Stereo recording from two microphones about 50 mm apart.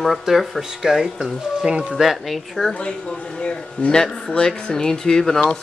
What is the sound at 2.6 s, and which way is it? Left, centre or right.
Speech, centre.